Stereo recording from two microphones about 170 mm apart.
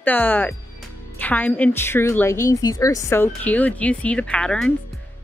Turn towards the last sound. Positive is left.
turn(degrees=5)  # may be behind; listen again after turning